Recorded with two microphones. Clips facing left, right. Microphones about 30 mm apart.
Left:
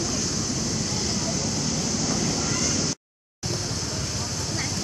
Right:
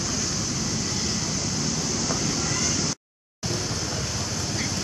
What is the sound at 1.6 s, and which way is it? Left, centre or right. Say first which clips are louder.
Waves: left 1 dB; centre.